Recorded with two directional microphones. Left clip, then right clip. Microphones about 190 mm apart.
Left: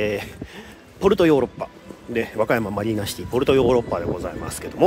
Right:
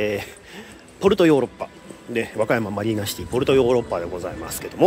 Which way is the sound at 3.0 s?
25° left (ahead or behind).